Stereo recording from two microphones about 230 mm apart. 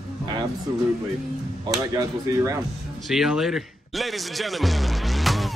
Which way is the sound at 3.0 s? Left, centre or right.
Centre.